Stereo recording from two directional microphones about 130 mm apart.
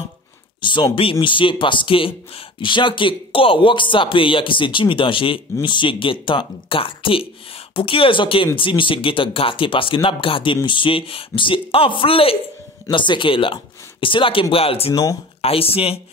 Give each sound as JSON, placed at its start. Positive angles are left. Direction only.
{"t": 0.6, "sound": "speech", "side_deg": 40}